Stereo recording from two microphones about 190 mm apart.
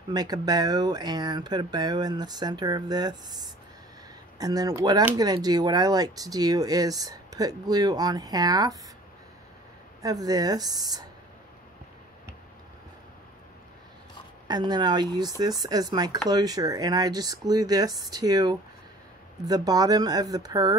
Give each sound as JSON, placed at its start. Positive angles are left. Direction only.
{"t": 0.1, "sound": "speech", "side_deg": -20}
{"t": 4.4, "sound": "speech", "side_deg": -20}
{"t": 10.0, "sound": "speech", "side_deg": -20}
{"t": 14.5, "sound": "speech", "side_deg": -20}